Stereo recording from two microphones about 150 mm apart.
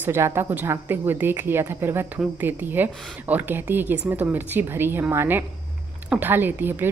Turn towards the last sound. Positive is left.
turn(degrees=-15)  # may be behind; listen again after turning